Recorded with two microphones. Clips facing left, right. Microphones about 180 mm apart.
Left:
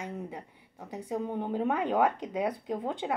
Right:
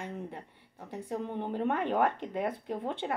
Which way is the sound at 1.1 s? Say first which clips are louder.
Left 3 dB; 10° left (ahead or behind).